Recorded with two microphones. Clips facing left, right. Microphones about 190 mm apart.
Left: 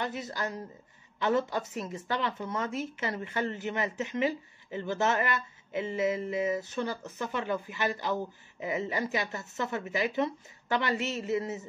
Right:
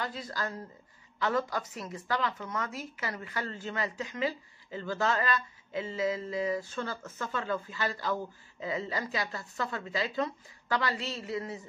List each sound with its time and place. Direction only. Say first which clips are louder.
0.0 s a woman's voice: left 2 dB; 20° left (ahead or behind)